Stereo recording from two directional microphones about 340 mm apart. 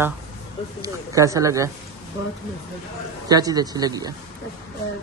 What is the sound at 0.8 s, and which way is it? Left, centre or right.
Speech, centre.